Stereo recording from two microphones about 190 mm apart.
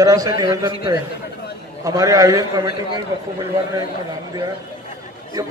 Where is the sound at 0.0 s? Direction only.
20° right (ahead or behind).